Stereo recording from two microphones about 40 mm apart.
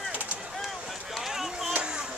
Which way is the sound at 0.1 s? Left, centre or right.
Right.